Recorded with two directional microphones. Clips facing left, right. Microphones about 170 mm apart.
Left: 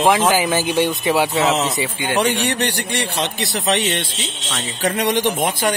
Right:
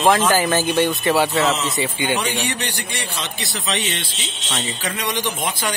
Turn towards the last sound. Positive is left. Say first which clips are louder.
# left 6 dB
turn(degrees=55)  # may be behind; listen again after turning